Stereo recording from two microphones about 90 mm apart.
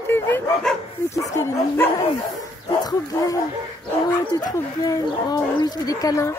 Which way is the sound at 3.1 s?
40° left (ahead or behind).